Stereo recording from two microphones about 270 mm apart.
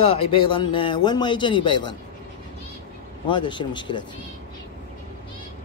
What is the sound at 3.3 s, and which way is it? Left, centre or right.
Speech, centre.